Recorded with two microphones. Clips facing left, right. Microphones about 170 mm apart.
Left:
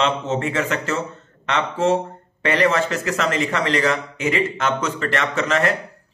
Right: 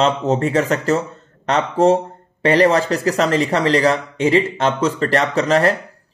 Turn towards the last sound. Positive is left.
turn(degrees=-35)  # may be behind; listen again after turning